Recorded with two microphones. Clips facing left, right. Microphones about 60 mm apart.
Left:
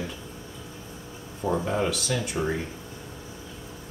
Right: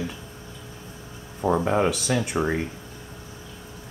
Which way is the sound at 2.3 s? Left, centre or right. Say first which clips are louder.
Right 3 dB; right.